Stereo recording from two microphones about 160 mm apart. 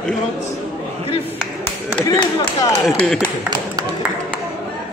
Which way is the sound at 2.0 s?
30° left (ahead or behind).